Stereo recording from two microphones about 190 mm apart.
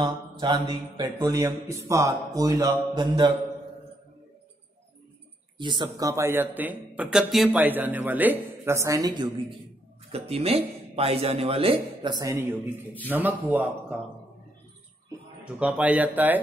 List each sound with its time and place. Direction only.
0.0 s mantra: 20° right (ahead or behind)
5.6 s speech: 25° right (ahead or behind)
10.1 s a man's voice: 30° right (ahead or behind); by 14.0 s 5° right (ahead or behind)
15.6 s speech: 10° right (ahead or behind)